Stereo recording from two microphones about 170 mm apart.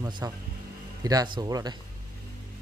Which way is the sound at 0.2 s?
20° right (ahead or behind).